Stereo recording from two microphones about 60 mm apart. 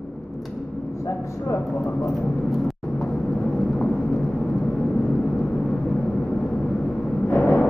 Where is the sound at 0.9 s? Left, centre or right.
Left.